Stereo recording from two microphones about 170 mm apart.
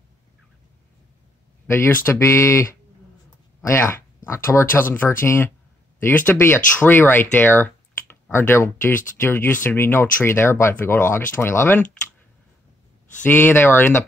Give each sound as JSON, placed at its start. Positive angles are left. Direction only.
{"t": 1.7, "sound": "speech", "side_deg": 15}
{"t": 13.2, "sound": "speech", "side_deg": 10}